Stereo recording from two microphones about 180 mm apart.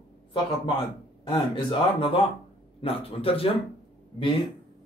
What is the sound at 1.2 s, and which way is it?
Speech, 30° left (ahead or behind).